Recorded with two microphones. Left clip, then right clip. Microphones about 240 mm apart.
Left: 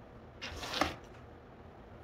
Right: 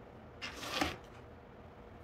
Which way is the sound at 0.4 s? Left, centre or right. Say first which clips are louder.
Left 1 dB; centre.